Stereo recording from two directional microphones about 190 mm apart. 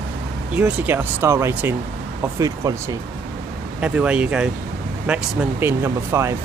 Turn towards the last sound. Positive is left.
turn(degrees=-15)  # may be behind; listen again after turning